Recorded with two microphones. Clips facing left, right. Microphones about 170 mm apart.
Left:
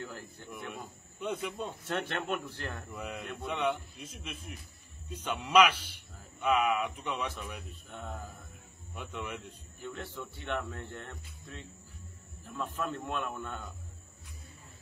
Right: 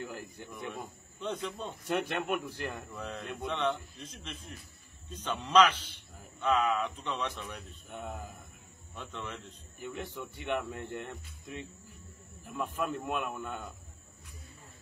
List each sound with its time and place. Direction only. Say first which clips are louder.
0.0 s speech: right 2 dB; 15° right (ahead or behind)
1.2 s a man's voice: left 1 dB; 10° left (ahead or behind)
1.9 s speech: right 3 dB; 10° right (ahead or behind)
2.9 s a man's voice: even; 10° left (ahead or behind)
7.9 s speech: right 2 dB; 15° right (ahead or behind)
8.9 s a man's voice: left 2 dB; 10° left (ahead or behind)
9.8 s speech: right 2 dB; 15° right (ahead or behind)